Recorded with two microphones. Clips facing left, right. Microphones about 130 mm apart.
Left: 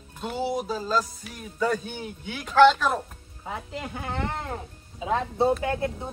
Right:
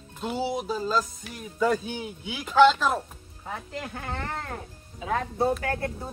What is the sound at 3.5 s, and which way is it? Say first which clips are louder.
Speech: left 1 dB; 10° left (ahead or behind).